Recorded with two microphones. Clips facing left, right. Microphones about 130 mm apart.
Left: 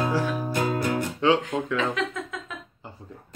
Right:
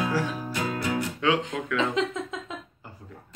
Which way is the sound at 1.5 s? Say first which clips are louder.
Left 4 dB; 30° left (ahead or behind).